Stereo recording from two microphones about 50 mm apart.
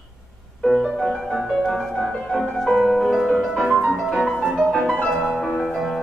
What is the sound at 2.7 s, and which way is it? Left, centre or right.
Music, centre.